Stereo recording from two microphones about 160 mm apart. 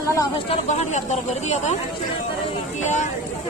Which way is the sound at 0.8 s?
45° left (ahead or behind).